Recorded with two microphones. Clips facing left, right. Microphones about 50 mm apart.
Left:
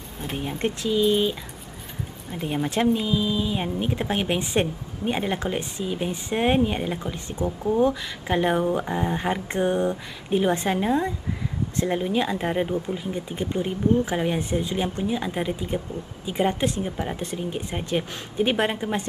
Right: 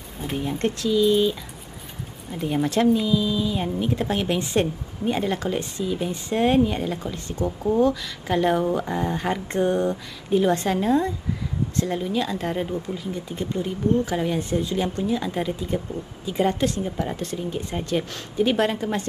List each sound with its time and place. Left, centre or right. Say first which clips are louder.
0.4 s speech: right 2 dB; centre
2.3 s speech: right 3 dB; centre
7.4 s speech: right 1 dB; centre
7.8 s speech: right 1 dB; left